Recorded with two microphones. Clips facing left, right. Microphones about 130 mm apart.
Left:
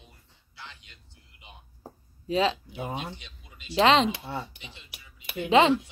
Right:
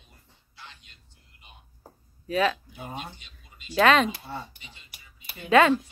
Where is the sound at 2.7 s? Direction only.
90° left.